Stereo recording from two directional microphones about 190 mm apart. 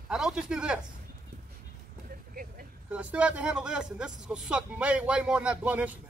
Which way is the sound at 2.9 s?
5° right (ahead or behind).